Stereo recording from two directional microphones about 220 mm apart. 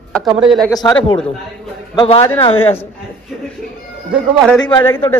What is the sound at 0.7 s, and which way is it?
A man's voice, 15° left (ahead or behind).